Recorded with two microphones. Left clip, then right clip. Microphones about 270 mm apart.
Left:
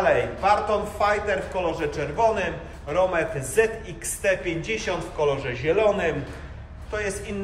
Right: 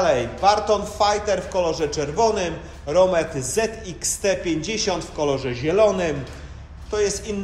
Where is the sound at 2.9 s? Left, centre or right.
Right.